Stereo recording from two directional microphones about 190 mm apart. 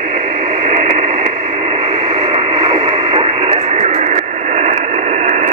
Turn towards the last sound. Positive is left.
turn(degrees=-35)  # may be behind; listen again after turning